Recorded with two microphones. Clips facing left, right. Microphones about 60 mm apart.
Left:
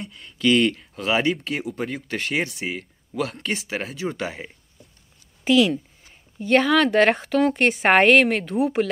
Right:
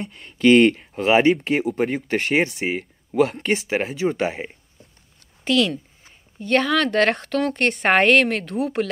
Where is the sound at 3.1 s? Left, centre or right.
Right.